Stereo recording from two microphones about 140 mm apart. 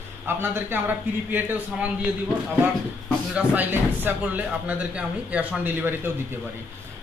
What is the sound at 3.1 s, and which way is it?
Speech, 10° right (ahead or behind).